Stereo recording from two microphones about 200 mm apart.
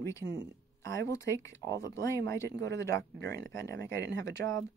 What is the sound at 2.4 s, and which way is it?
Speech, 60° right (ahead or behind).